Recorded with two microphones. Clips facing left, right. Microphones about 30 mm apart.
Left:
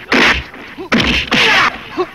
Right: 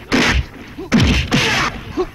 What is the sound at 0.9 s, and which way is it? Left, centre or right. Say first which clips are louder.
Whack: left 3 dB; left.